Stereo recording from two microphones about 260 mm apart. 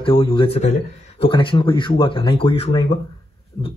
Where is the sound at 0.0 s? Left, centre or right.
Centre.